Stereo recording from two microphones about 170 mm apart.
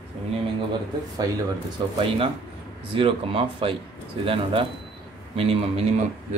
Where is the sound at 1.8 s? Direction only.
25° right (ahead or behind).